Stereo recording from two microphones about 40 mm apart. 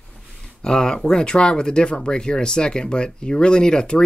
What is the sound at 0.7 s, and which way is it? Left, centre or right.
Speech, centre.